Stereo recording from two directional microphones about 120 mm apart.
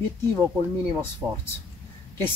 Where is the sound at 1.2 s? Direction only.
20° right (ahead or behind).